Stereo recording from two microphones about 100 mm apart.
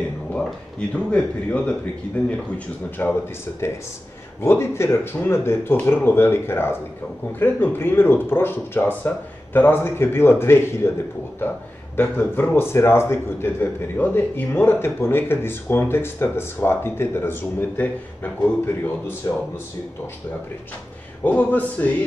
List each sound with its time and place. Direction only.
0.3 s speech: 15° left (ahead or behind)
3.0 s speech: 15° left (ahead or behind)
4.4 s a man's voice: 25° left (ahead or behind)
12.0 s a man's voice: 20° left (ahead or behind)
19.2 s speech: 35° left (ahead or behind)
21.2 s speech: 15° left (ahead or behind)